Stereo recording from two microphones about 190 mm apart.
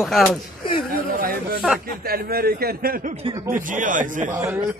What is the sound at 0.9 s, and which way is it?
A man's voice, 50° right (ahead or behind).